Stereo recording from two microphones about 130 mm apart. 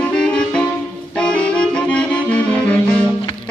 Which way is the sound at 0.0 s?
5° left (ahead or behind).